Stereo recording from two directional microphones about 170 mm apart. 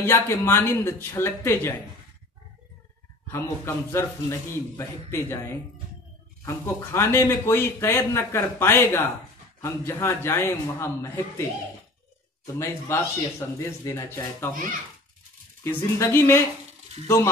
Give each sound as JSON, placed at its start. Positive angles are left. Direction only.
{"t": 0.0, "sound": "speech", "side_deg": 15}
{"t": 3.3, "sound": "speech", "side_deg": 15}
{"t": 6.4, "sound": "speech", "side_deg": 15}
{"t": 12.5, "sound": "speech", "side_deg": 15}
{"t": 15.6, "sound": "speech", "side_deg": 15}